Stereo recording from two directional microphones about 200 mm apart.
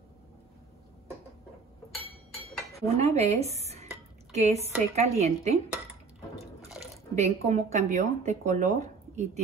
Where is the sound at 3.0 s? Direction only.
35° right (ahead or behind).